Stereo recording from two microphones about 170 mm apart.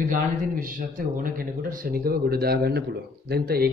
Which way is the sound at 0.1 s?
55° right (ahead or behind).